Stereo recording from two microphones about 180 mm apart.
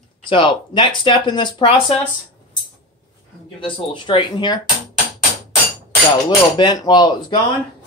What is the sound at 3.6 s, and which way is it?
Speech, 30° left (ahead or behind).